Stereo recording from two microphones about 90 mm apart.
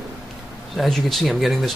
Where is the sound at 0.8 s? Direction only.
Centre (ahead or behind).